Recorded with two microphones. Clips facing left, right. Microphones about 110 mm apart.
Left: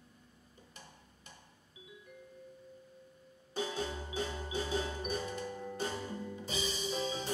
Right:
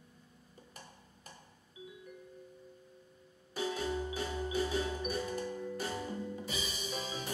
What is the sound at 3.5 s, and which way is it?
Music, 30° left (ahead or behind).